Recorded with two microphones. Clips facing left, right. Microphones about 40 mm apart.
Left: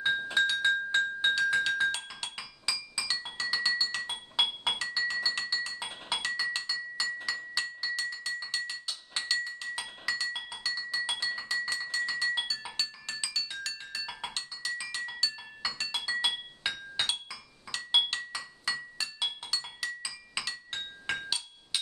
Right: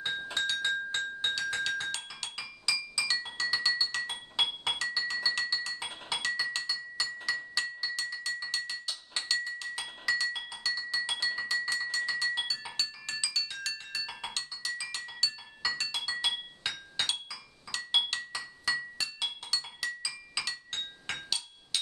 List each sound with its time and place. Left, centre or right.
0.0 s glass: centre
0.9 s music: centre
6.0 s chink: centre
10.0 s music: centre
16.2 s chink: centre
17.9 s glass: centre
20.7 s music: centre